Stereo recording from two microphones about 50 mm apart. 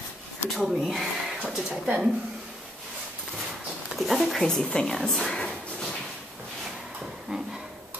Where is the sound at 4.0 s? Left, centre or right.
Centre.